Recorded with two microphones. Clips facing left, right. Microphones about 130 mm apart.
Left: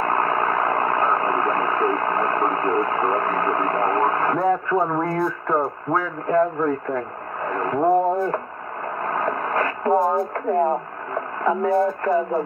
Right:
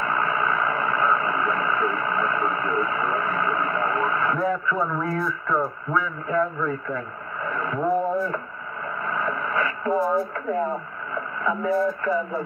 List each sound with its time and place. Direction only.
0.0 s vehicle: 45° left (ahead or behind)
9.0 s radio: 45° left (ahead or behind)